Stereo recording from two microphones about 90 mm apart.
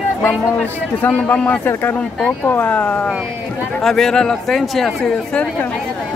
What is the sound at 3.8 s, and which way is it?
Speech, 5° left (ahead or behind).